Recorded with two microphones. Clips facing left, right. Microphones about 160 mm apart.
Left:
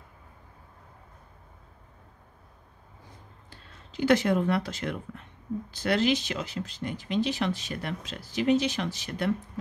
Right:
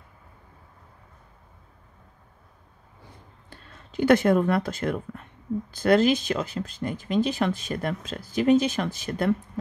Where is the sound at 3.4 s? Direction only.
55° right (ahead or behind).